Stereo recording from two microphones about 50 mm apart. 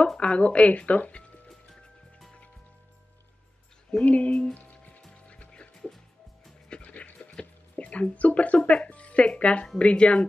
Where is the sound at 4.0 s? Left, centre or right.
Left.